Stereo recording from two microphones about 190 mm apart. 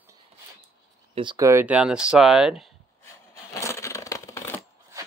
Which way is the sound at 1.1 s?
25° right (ahead or behind).